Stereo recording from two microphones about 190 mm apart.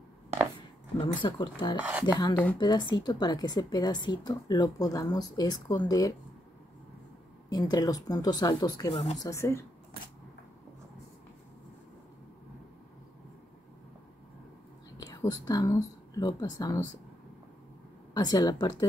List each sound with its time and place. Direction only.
0.6 s a sound: 25° left (ahead or behind)
1.8 s speech: 5° right (ahead or behind)
2.6 s a woman's voice: 20° left (ahead or behind)
7.4 s a woman's voice: 20° left (ahead or behind)
8.9 s speech: 35° left (ahead or behind)
9.2 s speech: 15° left (ahead or behind)
15.0 s whispering: 20° left (ahead or behind)
15.4 s a woman's voice: 20° left (ahead or behind)
18.1 s a woman's voice: 20° left (ahead or behind)